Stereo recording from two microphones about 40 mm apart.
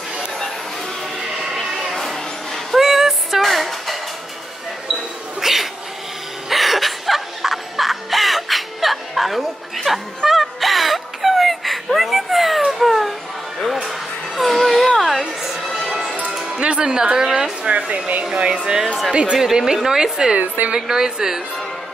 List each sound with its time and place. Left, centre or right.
1.6 s a sound: centre
5.4 s cat: centre
6.5 s a sound: centre
9.8 s music: centre
13.8 s a sound: centre
15.7 s music: centre
16.4 s music: right
17.6 s speech: right
19.3 s a woman's voice: centre
20.3 s a woman's voice: right
20.9 s a woman's voice: centre